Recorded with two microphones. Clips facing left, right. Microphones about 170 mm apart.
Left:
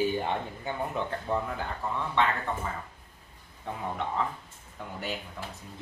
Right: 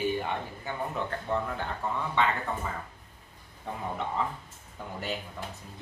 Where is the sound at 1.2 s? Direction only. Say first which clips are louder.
Right 2 dB; 10° left (ahead or behind).